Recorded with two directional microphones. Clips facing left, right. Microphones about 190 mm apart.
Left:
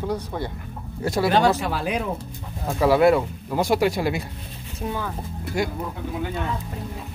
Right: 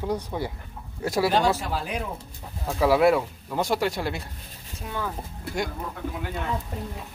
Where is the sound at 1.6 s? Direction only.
75° left (ahead or behind).